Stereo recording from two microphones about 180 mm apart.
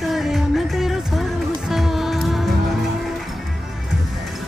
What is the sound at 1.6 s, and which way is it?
Music, centre (ahead or behind).